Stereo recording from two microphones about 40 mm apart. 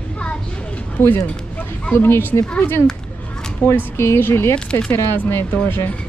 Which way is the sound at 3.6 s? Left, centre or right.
Left.